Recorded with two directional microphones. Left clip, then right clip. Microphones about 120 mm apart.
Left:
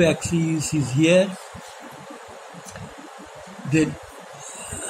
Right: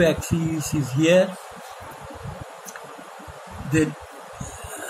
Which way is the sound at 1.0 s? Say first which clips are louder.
Even; 25° left (ahead or behind).